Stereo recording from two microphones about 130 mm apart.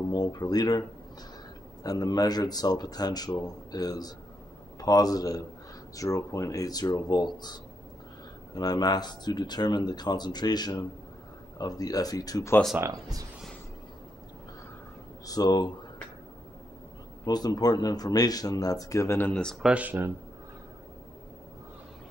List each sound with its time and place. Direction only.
0.1 s speech: 35° left (ahead or behind)
12.7 s speech: 25° right (ahead or behind)
15.2 s speech: 30° left (ahead or behind)
17.2 s speech: 30° left (ahead or behind); by 19.5 s 10° left (ahead or behind)
19.6 s speech: 10° right (ahead or behind)